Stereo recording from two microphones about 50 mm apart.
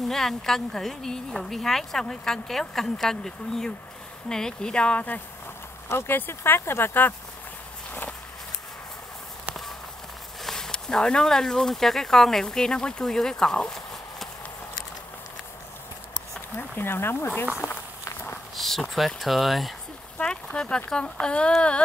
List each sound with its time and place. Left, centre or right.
0.1 s a woman's voice: centre; by 5.2 s left
5.9 s speech: left
10.4 s a woman's voice: centre
16.5 s speech: left
18.6 s a sound: centre
18.9 s speech: centre
20.2 s speech: centre